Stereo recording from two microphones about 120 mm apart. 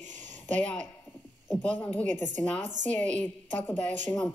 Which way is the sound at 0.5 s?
10° left (ahead or behind).